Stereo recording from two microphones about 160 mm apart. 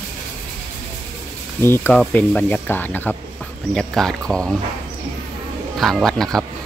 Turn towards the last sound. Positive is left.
turn(degrees=0)  # may be behind; listen again after turning